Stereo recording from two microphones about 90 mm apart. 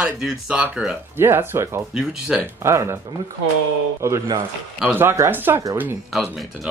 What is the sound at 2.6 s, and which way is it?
Speech, 30° right (ahead or behind).